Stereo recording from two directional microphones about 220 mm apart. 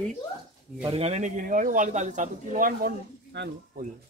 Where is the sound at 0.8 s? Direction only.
25° right (ahead or behind); by 3.5 s 45° right (ahead or behind).